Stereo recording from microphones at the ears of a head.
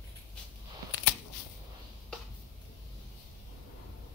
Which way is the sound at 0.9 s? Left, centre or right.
Left.